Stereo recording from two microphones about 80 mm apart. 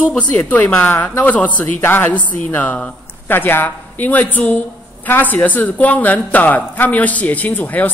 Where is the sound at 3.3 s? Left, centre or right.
Left.